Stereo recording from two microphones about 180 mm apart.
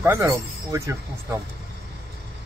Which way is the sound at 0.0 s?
15° right (ahead or behind).